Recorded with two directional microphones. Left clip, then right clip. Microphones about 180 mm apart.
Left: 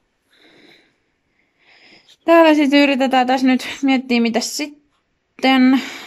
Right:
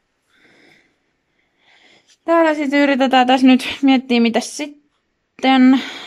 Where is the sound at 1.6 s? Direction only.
10° left (ahead or behind).